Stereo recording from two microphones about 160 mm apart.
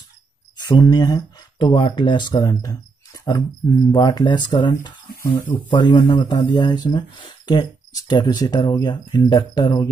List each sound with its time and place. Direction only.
0.6 s speech: 30° left (ahead or behind)
5.9 s speech: 25° left (ahead or behind)